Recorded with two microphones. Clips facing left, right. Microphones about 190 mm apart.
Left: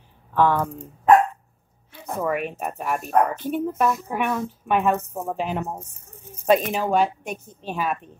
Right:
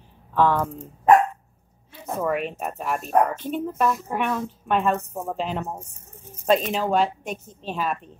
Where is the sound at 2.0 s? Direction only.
5° left (ahead or behind).